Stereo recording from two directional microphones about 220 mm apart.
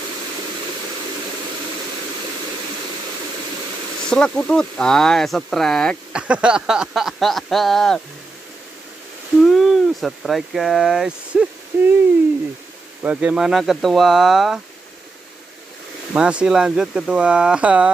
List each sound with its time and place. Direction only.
4.1 s speech: 5° left (ahead or behind)
9.4 s speech: centre (ahead or behind)
13.0 s speech: 5° right (ahead or behind)
16.1 s speech: 5° right (ahead or behind)